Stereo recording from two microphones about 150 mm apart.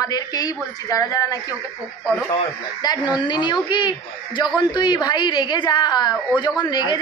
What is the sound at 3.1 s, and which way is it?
A woman's voice, 30° left (ahead or behind).